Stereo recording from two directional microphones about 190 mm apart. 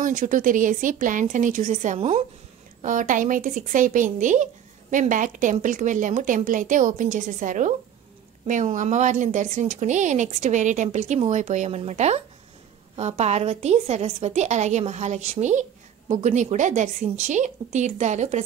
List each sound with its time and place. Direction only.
0.0 s a woman's voice: 45° right (ahead or behind)
2.8 s a woman's voice: 45° right (ahead or behind)